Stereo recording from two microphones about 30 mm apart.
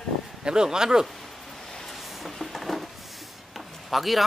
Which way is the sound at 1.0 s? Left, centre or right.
Centre.